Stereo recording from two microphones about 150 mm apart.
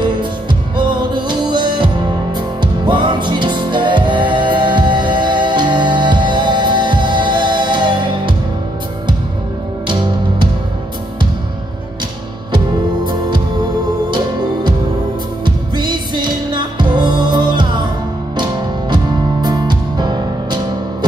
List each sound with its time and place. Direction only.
0.0 s music: 30° right (ahead or behind)
9.8 s music: 30° right (ahead or behind)
12.5 s music: 30° right (ahead or behind)
15.4 s music: 30° right (ahead or behind)